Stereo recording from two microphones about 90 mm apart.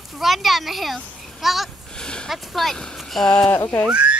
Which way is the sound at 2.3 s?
Centre (ahead or behind).